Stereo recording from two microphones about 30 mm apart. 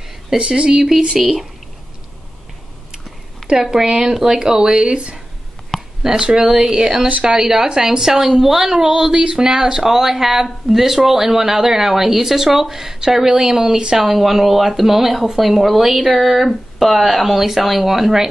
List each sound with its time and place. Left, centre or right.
0.4 s speech: right
0.7 s speech: right
3.4 s a sound: centre
3.7 s speech: right
5.7 s a sound: left
6.1 s a woman's voice: right; by 12.9 s centre
13.3 s speech: right
13.9 s a woman's voice: centre